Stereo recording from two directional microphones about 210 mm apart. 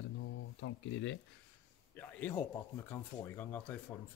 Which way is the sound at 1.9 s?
10° left (ahead or behind).